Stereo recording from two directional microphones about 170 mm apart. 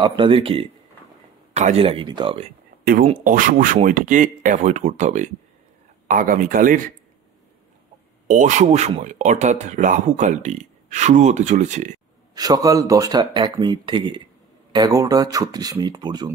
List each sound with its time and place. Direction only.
0.0 s speech: 30° right (ahead or behind)
2.8 s speech: 60° right (ahead or behind)
8.3 s speech: 45° right (ahead or behind)
12.4 s speech: 20° right (ahead or behind)